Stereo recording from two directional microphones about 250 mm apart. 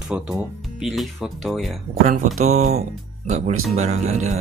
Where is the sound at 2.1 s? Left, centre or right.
Right.